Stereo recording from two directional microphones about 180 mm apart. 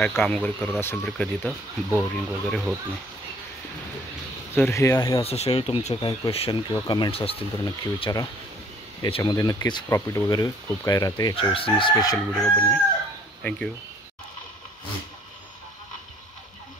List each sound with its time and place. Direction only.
0.0 s speech: 10° left (ahead or behind)
4.6 s speech: 15° left (ahead or behind)
5.2 s speech: 35° left (ahead or behind)
7.6 s speech: 20° left (ahead or behind)
12.4 s speech: 10° left (ahead or behind)